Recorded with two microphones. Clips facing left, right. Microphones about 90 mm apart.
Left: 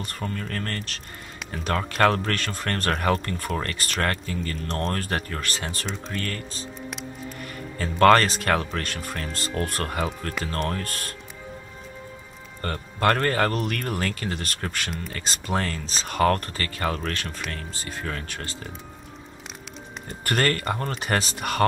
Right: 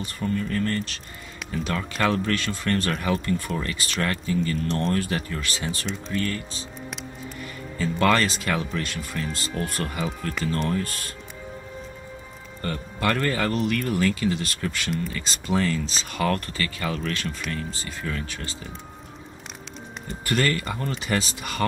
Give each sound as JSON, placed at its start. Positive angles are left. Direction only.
{"t": 0.0, "sound": "speech", "side_deg": 55}
{"t": 7.8, "sound": "speech", "side_deg": 55}
{"t": 12.6, "sound": "speech", "side_deg": 50}
{"t": 20.1, "sound": "speech", "side_deg": 55}